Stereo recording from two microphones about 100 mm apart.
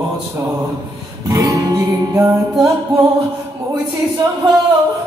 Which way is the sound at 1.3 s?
35° right (ahead or behind).